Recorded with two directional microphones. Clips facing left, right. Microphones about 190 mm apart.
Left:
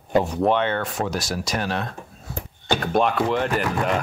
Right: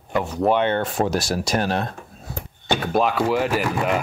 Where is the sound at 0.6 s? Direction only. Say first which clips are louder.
Right 3 dB; 25° right (ahead or behind).